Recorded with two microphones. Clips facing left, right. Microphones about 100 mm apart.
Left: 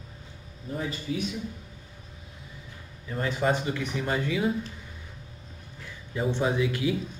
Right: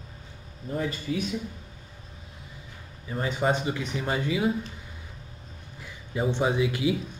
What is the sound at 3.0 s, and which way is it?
Speech, 20° right (ahead or behind).